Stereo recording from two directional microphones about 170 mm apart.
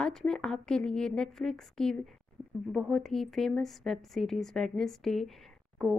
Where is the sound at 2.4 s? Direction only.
10° right (ahead or behind).